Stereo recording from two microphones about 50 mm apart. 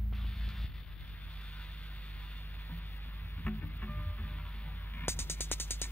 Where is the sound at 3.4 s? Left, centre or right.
Centre.